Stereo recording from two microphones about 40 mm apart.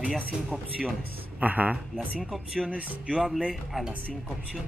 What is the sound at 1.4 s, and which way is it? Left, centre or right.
Speech, right.